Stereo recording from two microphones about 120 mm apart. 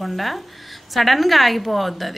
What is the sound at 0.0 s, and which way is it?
Speech, centre (ahead or behind).